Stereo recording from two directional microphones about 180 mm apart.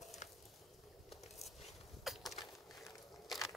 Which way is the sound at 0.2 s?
45° left (ahead or behind).